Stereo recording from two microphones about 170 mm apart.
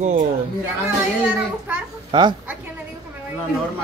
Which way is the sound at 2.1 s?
30° right (ahead or behind).